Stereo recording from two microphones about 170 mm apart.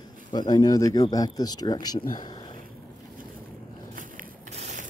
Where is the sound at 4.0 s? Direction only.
45° right (ahead or behind).